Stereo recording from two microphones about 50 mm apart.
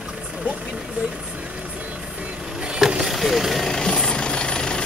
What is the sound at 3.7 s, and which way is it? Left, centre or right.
Vehicle, centre.